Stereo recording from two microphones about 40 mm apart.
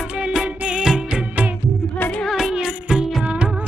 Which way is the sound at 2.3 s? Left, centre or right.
Centre.